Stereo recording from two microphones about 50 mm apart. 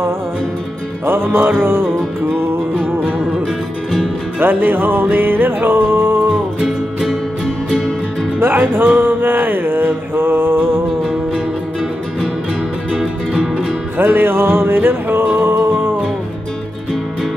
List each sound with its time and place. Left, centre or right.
1.0 s music: right
4.4 s music: right
7.0 s music: centre
8.4 s music: right
11.0 s music: centre
13.0 s music: centre
13.9 s music: right